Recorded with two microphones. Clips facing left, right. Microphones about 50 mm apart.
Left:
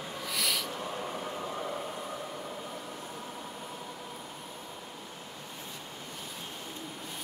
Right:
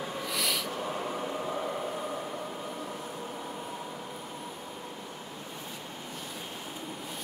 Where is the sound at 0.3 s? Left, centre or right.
Centre.